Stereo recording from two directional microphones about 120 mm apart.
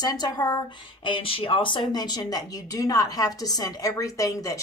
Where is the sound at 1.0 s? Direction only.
45° left (ahead or behind); by 4.6 s 30° left (ahead or behind).